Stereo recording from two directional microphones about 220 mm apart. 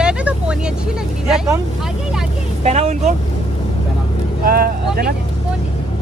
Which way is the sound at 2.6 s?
30° right (ahead or behind).